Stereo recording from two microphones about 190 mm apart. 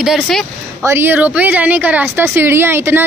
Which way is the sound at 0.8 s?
10° right (ahead or behind).